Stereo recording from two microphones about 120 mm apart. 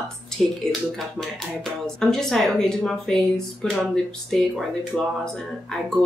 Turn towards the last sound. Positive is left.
turn(degrees=5)  # may be behind; listen again after turning